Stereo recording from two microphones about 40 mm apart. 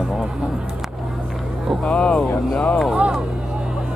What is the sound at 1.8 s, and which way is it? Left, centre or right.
Speech, left.